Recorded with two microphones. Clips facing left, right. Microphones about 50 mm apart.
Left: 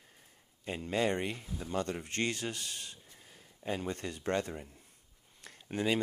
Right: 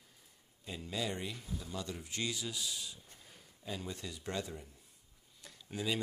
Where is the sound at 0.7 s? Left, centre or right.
Left.